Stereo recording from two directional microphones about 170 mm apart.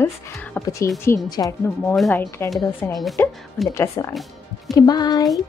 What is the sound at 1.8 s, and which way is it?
A woman's voice, centre (ahead or behind).